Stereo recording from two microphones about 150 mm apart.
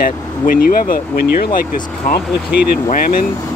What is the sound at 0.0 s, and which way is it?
Speech, 75° left (ahead or behind).